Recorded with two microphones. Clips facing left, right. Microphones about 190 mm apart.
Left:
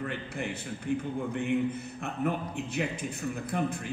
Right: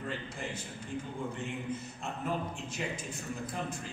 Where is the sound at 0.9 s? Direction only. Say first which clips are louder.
Left 7 dB; 60° left (ahead or behind).